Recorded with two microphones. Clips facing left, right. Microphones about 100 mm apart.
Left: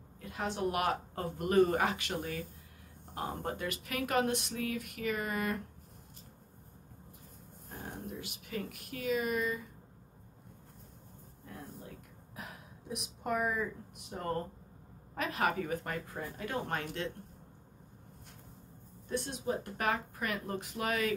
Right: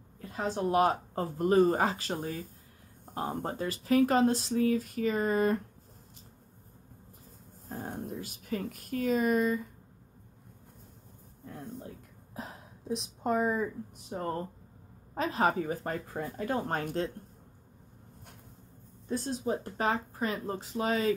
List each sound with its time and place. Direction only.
0.2 s speech: 35° right (ahead or behind)
3.4 s speech: 30° right (ahead or behind)
7.7 s speech: 40° right (ahead or behind)
12.4 s a sound: 30° right (ahead or behind)
14.1 s speech: 30° right (ahead or behind)
19.0 s speech: 30° right (ahead or behind)